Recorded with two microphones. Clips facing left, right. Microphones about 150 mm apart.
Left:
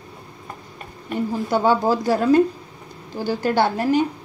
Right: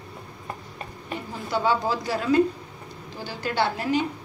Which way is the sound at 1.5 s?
45° left (ahead or behind).